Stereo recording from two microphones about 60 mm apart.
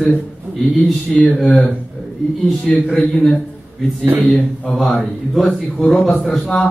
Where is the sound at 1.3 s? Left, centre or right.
Centre.